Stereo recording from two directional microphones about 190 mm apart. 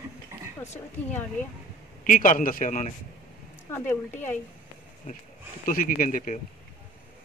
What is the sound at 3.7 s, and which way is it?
Speech, 10° left (ahead or behind).